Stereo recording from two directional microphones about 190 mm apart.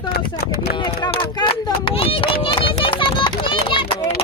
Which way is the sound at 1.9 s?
30° left (ahead or behind).